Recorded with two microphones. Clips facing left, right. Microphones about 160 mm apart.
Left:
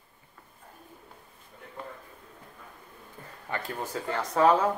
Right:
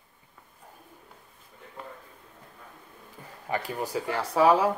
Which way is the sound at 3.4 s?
15° right (ahead or behind).